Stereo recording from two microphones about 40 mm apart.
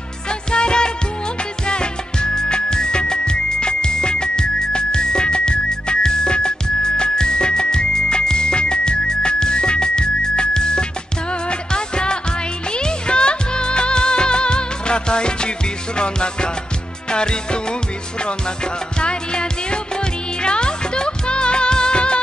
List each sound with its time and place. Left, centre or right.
0.3 s music: left